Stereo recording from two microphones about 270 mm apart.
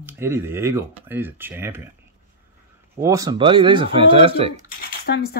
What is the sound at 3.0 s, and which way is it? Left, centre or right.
Speech, centre.